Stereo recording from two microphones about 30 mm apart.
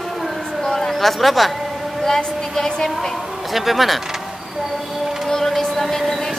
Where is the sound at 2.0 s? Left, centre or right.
Centre.